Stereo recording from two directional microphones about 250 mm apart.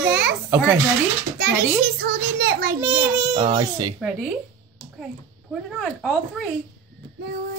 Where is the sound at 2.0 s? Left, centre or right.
Right.